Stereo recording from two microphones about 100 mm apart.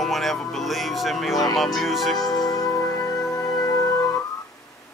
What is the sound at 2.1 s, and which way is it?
Music, 40° left (ahead or behind).